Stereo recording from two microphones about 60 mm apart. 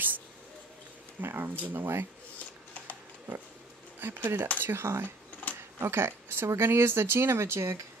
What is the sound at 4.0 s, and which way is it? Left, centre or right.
Speech, right.